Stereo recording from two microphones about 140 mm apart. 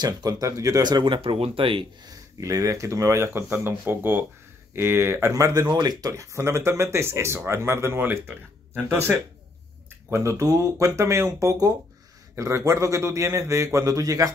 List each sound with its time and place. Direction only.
0.0 s speech: 25° right (ahead or behind)
2.4 s speech: 25° right (ahead or behind)
10.0 s speech: 20° right (ahead or behind)